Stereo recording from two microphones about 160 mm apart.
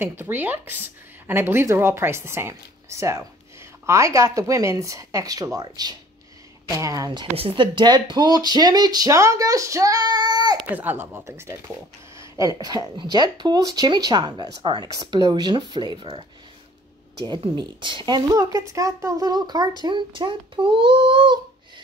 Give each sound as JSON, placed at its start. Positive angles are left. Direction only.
{"t": 0.0, "sound": "a woman's voice", "side_deg": -15}
{"t": 7.3, "sound": "speech", "side_deg": -35}
{"t": 10.7, "sound": "a woman's voice", "side_deg": -10}
{"t": 17.4, "sound": "a child's voice", "side_deg": -30}